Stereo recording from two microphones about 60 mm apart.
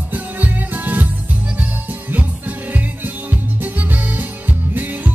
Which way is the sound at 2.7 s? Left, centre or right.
Right.